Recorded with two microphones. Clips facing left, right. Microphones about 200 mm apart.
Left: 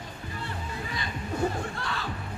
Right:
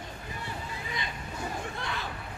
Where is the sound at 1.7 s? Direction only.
20° right (ahead or behind).